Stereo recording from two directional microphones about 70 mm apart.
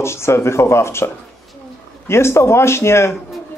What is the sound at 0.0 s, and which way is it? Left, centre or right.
Speech, left.